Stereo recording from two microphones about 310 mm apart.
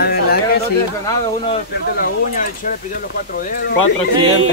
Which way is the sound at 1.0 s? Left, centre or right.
Centre.